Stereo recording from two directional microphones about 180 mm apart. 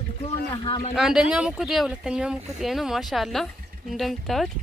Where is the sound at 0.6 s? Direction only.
25° left (ahead or behind).